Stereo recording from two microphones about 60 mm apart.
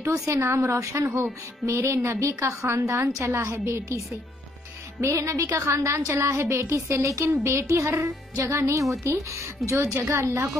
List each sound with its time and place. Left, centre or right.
0.4 s a woman's voice: right
1.0 s speech: right
1.7 s a woman's voice: right